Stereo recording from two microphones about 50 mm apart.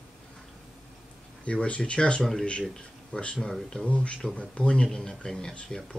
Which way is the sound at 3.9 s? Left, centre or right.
Left.